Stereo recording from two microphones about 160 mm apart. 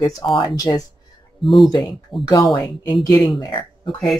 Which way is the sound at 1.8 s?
25° left (ahead or behind).